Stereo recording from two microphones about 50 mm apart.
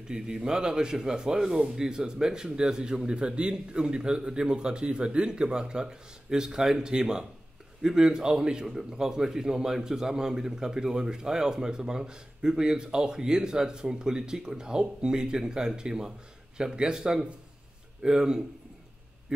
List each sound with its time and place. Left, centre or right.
0.1 s a man's voice: centre